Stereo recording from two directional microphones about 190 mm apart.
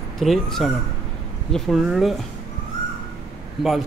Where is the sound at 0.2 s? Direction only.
Centre (ahead or behind).